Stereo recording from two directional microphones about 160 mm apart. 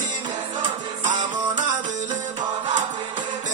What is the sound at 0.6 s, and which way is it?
Music, 50° right (ahead or behind).